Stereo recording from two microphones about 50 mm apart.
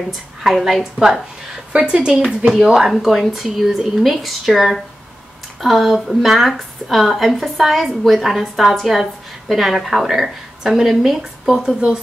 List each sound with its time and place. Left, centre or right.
0.4 s a woman's voice: centre
1.9 s a woman's voice: centre